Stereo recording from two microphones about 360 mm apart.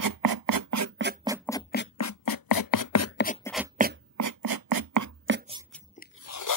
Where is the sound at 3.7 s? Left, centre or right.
Right.